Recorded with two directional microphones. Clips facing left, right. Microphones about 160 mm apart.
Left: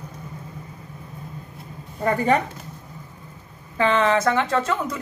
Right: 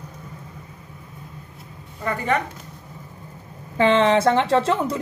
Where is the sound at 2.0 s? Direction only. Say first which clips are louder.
Left 4 dB; 40° left (ahead or behind).